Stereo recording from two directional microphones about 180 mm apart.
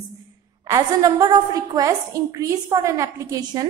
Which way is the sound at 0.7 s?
20° right (ahead or behind).